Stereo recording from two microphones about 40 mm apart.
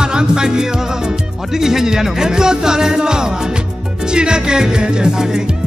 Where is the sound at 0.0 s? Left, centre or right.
Right.